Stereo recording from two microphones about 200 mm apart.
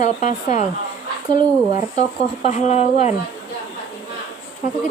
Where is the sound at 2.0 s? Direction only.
35° left (ahead or behind).